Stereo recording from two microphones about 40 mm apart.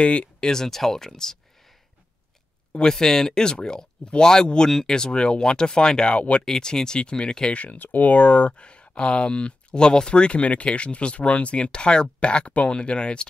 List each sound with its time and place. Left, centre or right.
0.0 s speech: left
0.4 s speech: centre
2.9 s speech: centre
7.5 s speech: left